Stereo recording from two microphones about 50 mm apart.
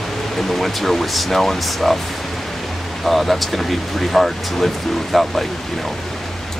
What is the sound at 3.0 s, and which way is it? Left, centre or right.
Speech, centre.